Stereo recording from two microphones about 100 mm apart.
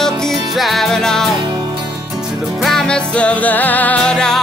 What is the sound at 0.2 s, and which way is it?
Music, centre (ahead or behind).